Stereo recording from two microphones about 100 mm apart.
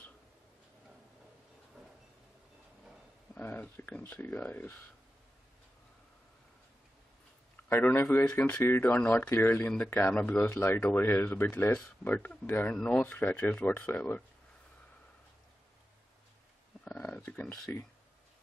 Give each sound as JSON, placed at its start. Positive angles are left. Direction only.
{"t": 3.3, "sound": "speech", "side_deg": 20}
{"t": 7.7, "sound": "speech", "side_deg": 20}
{"t": 10.4, "sound": "speech", "side_deg": 25}
{"t": 16.8, "sound": "speech", "side_deg": 10}